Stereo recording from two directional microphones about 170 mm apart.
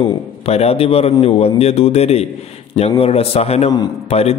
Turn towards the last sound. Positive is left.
turn(degrees=35)  # may be behind; listen again after turning